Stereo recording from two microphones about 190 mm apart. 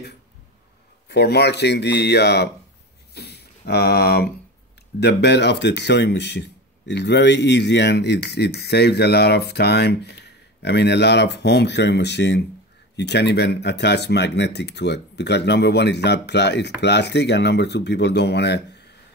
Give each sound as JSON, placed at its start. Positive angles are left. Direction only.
{"t": 1.0, "sound": "speech", "side_deg": 60}